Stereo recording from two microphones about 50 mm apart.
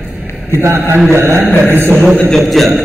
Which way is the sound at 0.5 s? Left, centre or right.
Right.